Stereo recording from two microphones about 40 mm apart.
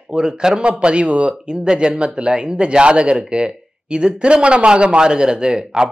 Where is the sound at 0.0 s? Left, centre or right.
Centre.